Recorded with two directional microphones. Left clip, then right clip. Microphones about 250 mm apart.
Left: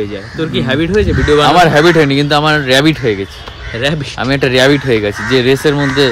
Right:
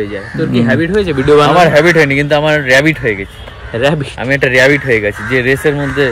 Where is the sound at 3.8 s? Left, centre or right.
Right.